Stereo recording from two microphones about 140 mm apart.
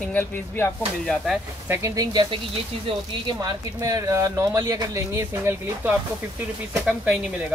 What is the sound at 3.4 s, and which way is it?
Speech, 25° right (ahead or behind).